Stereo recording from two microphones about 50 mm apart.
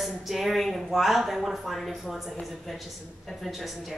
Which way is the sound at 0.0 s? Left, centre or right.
Centre.